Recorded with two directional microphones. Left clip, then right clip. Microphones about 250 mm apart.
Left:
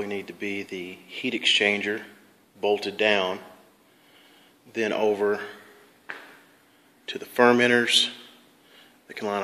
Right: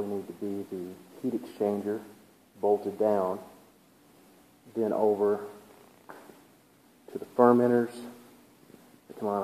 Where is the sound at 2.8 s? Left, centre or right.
Left.